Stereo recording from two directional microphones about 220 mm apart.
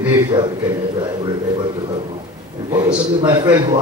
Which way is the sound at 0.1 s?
20° right (ahead or behind).